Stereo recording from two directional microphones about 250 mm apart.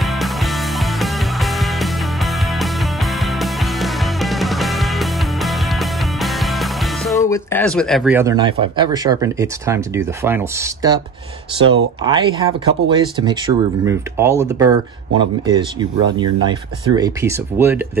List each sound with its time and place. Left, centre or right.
0.0 s music: centre
7.2 s speech: centre
12.0 s speech: centre